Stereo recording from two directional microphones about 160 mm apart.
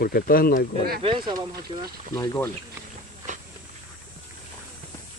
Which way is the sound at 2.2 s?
15° left (ahead or behind).